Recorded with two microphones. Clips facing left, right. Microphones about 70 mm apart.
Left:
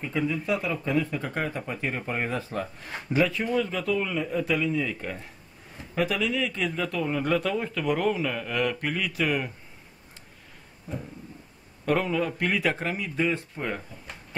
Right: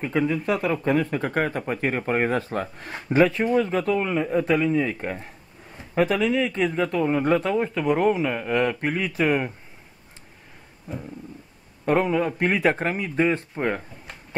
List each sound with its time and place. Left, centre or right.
0.0 s speech: right
11.8 s speech: right